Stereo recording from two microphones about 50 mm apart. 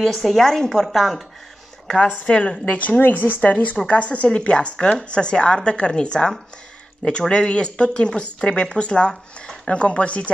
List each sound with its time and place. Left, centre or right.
0.1 s speech: centre
0.5 s a woman's voice: centre
0.8 s speech: centre
2.2 s speech: left